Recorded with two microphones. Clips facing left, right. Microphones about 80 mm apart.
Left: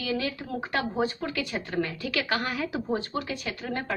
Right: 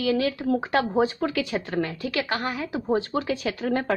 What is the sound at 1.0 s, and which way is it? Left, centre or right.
Speech, right.